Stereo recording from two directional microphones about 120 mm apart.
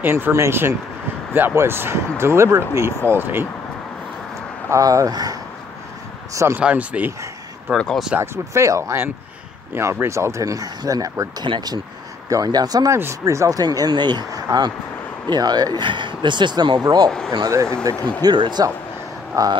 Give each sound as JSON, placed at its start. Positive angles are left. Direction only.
{"t": 0.0, "sound": "speech", "side_deg": -20}
{"t": 4.6, "sound": "speech", "side_deg": -25}
{"t": 6.6, "sound": "speech", "side_deg": -10}
{"t": 7.7, "sound": "speech", "side_deg": 5}
{"t": 8.2, "sound": "speech", "side_deg": -25}
{"t": 18.2, "sound": "speech", "side_deg": -40}